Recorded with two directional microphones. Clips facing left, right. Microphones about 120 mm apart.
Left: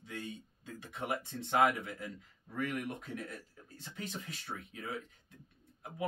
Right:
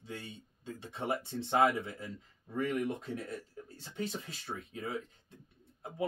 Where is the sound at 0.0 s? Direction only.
30° right (ahead or behind).